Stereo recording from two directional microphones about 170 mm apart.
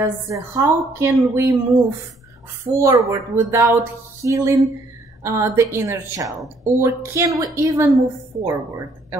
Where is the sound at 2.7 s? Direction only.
20° right (ahead or behind).